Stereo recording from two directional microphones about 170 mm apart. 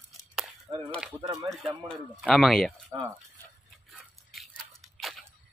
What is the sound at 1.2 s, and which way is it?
Speech, 25° right (ahead or behind).